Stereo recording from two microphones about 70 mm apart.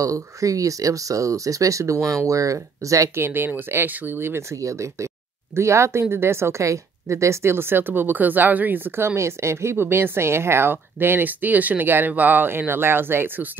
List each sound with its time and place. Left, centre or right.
0.0 s speech: right
3.2 s speech: right